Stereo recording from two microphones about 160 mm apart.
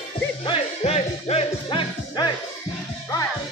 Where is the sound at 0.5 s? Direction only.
40° left (ahead or behind).